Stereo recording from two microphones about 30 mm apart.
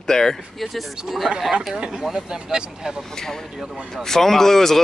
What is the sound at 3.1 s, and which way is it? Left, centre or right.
Speech, centre.